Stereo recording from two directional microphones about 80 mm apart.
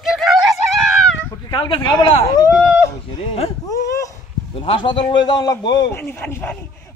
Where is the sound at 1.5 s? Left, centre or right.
Left.